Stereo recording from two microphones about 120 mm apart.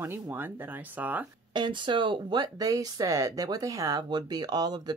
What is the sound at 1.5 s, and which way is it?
Speech, 40° right (ahead or behind).